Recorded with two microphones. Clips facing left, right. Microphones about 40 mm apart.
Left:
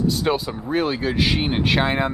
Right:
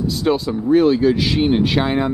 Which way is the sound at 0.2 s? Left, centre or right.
Centre.